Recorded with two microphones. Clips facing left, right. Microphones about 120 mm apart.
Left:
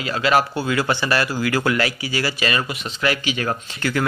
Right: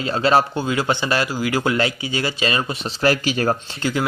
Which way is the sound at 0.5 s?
20° right (ahead or behind).